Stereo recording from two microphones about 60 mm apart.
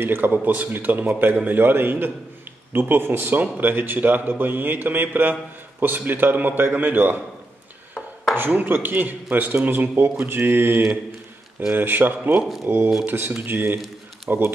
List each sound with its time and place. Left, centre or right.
0.0 s a man's voice: right
1.3 s a man's voice: right
1.6 s a man's voice: right
8.4 s a man's voice: right
12.4 s speech: centre
12.6 s a man's voice: right